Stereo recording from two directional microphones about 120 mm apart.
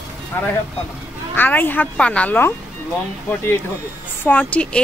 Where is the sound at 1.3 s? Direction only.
15° left (ahead or behind).